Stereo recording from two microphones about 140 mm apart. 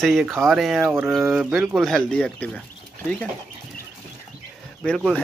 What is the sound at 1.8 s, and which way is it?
Speech, 5° left (ahead or behind).